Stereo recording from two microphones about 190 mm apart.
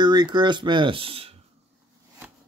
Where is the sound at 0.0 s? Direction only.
25° right (ahead or behind).